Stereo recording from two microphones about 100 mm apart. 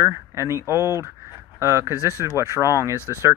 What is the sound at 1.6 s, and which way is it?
Speech, 25° right (ahead or behind).